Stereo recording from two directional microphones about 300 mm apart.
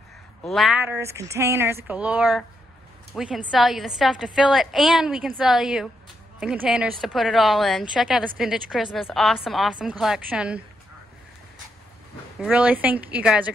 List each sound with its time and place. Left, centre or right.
0.4 s a woman's voice: centre
12.4 s a woman's voice: centre